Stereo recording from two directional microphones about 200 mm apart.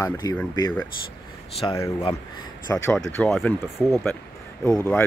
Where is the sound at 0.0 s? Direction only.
15° left (ahead or behind).